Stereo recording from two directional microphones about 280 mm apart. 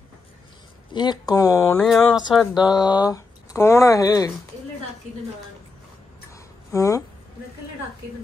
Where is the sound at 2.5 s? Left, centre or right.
Centre.